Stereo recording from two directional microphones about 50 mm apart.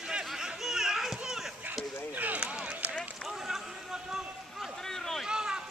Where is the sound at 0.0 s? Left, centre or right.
Centre.